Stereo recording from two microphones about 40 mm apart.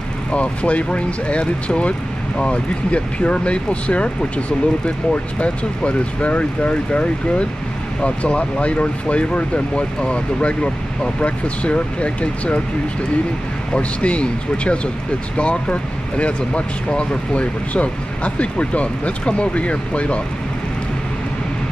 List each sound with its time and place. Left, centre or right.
0.3 s speech: left
13.7 s speech: left